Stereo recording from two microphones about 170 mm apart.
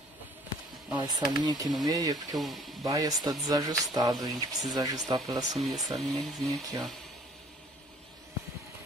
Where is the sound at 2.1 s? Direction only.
Centre (ahead or behind).